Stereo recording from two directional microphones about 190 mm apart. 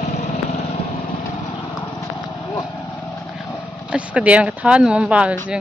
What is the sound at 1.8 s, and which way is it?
Clip-clop, 20° left (ahead or behind).